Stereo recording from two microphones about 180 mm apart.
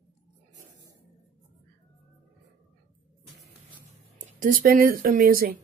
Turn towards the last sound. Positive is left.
turn(degrees=-55)  # may be behind; listen again after turning